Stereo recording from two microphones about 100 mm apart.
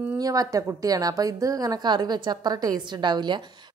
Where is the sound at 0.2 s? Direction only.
35° right (ahead or behind).